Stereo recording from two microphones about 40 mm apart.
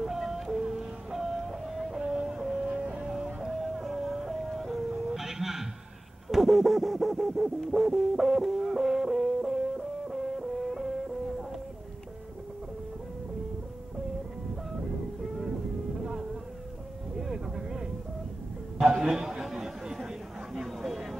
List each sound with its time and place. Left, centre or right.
0.0 s music: centre
3.5 s music: centre
6.2 s a sound: centre
7.6 s music: centre
17.2 s vehicle: centre
19.0 s chatter: centre
20.5 s a sound: centre